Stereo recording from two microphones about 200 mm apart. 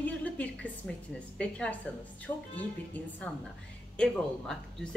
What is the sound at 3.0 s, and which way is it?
A woman's voice, 10° left (ahead or behind).